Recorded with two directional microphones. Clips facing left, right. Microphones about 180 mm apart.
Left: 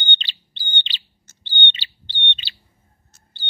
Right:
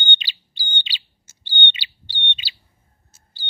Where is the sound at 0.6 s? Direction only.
10° right (ahead or behind).